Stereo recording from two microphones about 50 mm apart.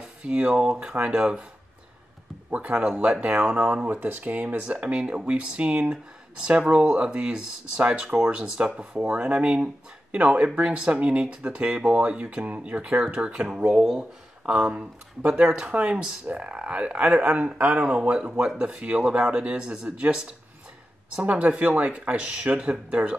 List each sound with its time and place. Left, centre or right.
0.0 s speech: right
2.5 s speech: right
13.7 s speech: centre